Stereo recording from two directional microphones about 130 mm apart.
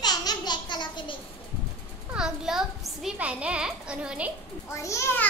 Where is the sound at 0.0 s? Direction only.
30° left (ahead or behind).